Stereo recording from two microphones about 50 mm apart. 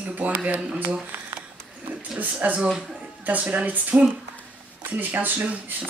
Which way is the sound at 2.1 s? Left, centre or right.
Right.